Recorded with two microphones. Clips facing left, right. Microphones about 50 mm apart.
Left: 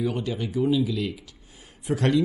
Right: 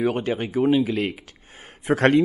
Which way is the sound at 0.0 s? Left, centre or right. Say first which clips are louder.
Right 4 dB; right.